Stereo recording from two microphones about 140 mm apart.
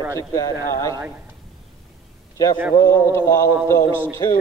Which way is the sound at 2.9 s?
20° left (ahead or behind).